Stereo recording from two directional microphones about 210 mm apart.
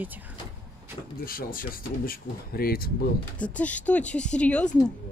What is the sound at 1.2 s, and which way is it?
Speech, 45° left (ahead or behind).